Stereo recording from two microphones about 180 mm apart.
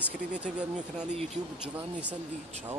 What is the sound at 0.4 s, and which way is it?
Speech, 5° right (ahead or behind).